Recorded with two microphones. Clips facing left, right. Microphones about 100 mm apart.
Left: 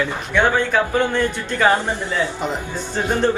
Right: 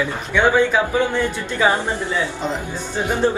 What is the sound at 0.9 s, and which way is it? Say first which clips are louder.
Speech: even; 15° right (ahead or behind).